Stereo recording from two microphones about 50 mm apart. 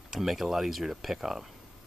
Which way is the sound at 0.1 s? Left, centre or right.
Centre.